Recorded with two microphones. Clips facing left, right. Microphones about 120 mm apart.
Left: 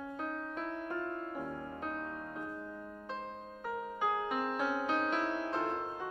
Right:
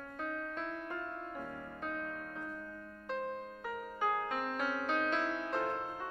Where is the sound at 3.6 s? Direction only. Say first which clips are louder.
Left 2 dB; 10° left (ahead or behind).